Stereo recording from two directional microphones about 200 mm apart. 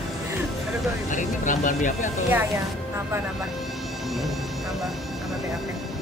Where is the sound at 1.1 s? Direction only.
40° left (ahead or behind).